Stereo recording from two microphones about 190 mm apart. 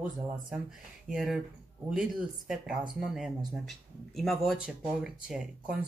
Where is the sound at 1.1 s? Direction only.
Centre (ahead or behind).